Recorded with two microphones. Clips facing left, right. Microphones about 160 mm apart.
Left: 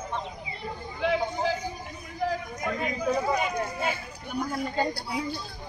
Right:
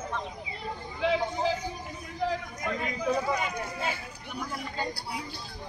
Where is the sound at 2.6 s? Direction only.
5° left (ahead or behind).